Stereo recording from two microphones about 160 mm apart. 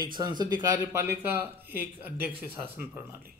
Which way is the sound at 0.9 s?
15° right (ahead or behind).